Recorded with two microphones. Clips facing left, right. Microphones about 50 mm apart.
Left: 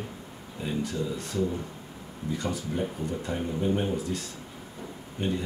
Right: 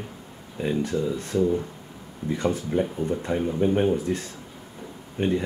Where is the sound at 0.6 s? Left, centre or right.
Right.